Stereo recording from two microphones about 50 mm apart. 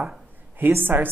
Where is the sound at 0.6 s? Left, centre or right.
Right.